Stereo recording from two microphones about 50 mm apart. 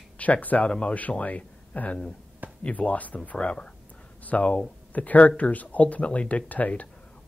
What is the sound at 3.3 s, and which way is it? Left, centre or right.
Speech, centre.